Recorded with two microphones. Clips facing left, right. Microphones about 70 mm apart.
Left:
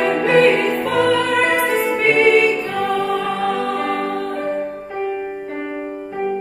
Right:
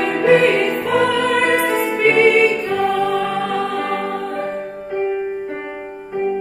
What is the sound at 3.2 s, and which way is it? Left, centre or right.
Music, right.